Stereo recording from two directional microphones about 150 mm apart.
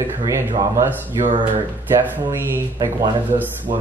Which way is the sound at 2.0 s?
15° right (ahead or behind).